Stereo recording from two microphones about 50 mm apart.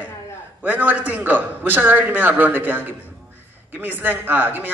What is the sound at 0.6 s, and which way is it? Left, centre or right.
A man's voice, right.